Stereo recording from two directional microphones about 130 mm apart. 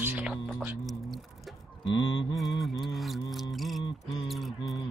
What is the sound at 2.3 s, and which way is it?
Music, centre (ahead or behind).